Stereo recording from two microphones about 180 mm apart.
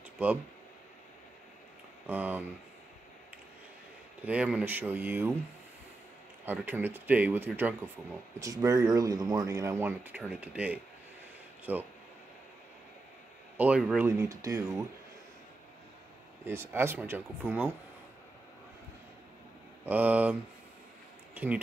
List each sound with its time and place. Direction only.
2.0 s speech: 10° right (ahead or behind)
4.2 s speech: 5° right (ahead or behind)
6.4 s speech: 10° right (ahead or behind)
13.6 s speech: 5° right (ahead or behind)
16.4 s speech: 15° right (ahead or behind)
19.8 s speech: 10° right (ahead or behind)